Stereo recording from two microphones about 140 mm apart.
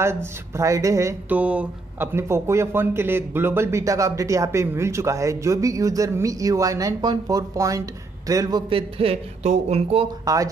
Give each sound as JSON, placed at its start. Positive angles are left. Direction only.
{"t": 0.0, "sound": "a man's voice", "side_deg": -20}
{"t": 1.3, "sound": "a man's voice", "side_deg": -10}
{"t": 10.2, "sound": "a man's voice", "side_deg": -25}